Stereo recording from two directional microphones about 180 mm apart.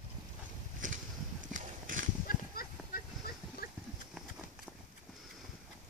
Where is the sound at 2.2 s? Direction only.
55° left (ahead or behind).